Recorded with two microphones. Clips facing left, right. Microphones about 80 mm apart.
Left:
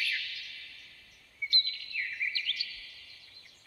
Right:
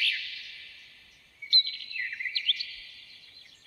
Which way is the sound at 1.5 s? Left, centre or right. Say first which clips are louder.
Right 5 dB; right.